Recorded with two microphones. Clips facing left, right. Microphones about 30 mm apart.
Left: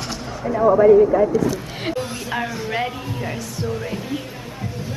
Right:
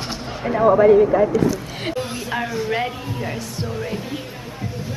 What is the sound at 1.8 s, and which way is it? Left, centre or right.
Speech, centre.